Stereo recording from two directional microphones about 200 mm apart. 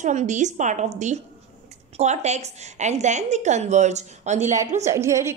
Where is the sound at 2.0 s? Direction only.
35° right (ahead or behind).